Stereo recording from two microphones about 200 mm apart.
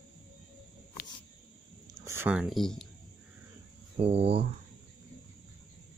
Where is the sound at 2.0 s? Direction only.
15° right (ahead or behind).